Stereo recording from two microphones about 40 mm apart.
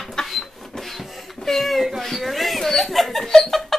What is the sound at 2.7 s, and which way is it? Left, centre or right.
Chuckle, centre.